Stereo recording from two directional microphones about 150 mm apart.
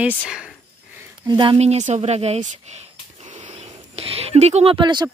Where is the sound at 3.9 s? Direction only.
40° right (ahead or behind).